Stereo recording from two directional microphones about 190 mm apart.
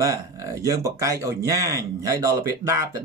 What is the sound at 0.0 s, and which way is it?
Speech, 15° right (ahead or behind).